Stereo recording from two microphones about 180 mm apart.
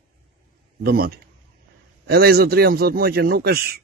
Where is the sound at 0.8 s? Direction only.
60° right (ahead or behind).